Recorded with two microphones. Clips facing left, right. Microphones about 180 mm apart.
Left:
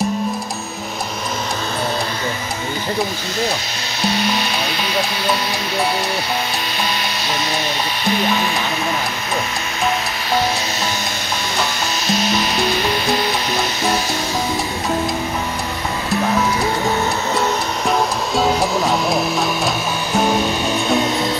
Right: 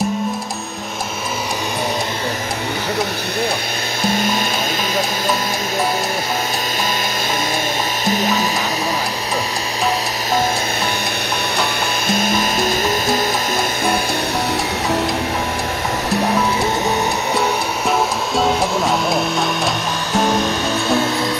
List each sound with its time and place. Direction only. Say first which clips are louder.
4.0 s music: even; 50° right (ahead or behind)
8.0 s music: even; 45° right (ahead or behind)
12.1 s music: even; 50° right (ahead or behind)
17.8 s music: even; centre (ahead or behind); by 21.3 s 20° left (ahead or behind)